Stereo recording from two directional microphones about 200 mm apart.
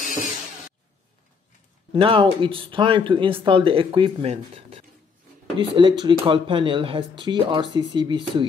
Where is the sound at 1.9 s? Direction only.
25° right (ahead or behind).